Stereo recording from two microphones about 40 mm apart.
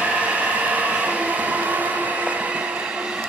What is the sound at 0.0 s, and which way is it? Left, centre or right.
Train, right.